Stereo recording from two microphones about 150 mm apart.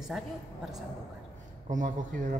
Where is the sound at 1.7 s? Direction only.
60° right (ahead or behind).